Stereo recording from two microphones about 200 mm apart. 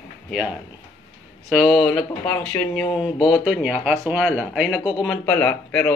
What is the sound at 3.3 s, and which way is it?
Speech, 5° right (ahead or behind).